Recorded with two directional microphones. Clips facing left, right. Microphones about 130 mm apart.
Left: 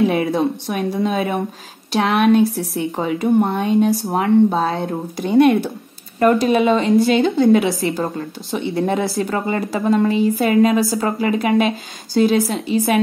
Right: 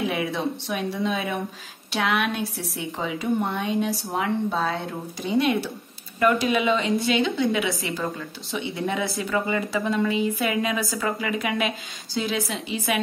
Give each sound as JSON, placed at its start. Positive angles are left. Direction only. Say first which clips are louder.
{"t": 0.1, "sound": "a woman's voice", "louder": "left 8 dB", "side_deg": 50}
{"t": 6.1, "sound": "a woman's voice", "louder": "left 7 dB", "side_deg": 40}